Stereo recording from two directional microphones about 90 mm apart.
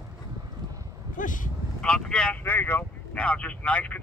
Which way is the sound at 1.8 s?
5° left (ahead or behind).